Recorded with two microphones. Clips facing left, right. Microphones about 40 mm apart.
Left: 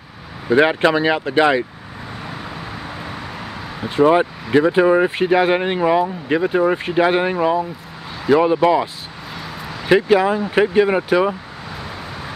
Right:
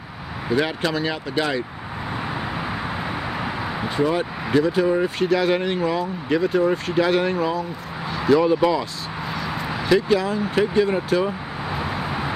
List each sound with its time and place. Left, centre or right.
0.6 s speech: left
3.9 s speech: left
9.8 s speech: left